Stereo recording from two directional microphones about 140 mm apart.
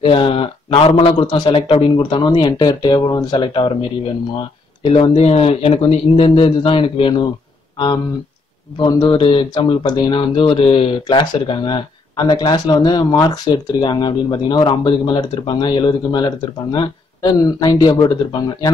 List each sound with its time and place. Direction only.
0.0 s speech: 40° left (ahead or behind)
4.8 s speech: 40° left (ahead or behind)